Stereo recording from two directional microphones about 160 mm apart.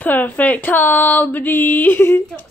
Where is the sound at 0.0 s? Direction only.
10° left (ahead or behind).